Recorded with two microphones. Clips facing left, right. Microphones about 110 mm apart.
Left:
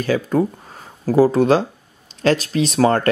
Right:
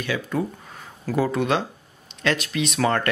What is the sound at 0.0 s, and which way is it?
Speech, 40° left (ahead or behind).